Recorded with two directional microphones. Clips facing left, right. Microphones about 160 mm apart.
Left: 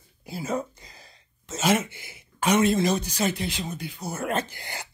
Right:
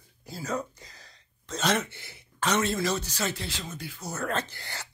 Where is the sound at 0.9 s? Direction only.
10° left (ahead or behind).